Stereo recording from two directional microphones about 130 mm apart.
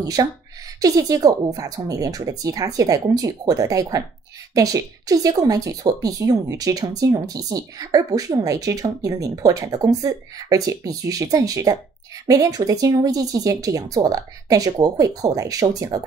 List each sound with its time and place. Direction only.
0.0 s speech: 25° right (ahead or behind)